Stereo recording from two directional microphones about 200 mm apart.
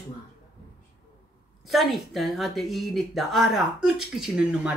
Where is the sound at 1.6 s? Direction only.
Centre (ahead or behind).